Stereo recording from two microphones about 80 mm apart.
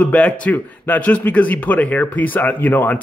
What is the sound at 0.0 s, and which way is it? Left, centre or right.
A man's voice, centre.